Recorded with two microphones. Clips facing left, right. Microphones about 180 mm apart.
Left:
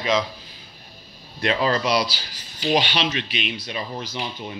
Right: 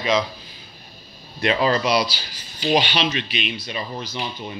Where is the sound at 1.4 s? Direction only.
10° right (ahead or behind).